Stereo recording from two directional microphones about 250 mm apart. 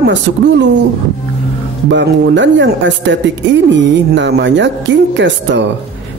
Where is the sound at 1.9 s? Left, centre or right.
Right.